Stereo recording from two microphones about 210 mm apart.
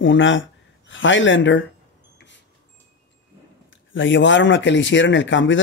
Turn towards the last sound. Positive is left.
turn(degrees=60)  # may be behind; listen again after turning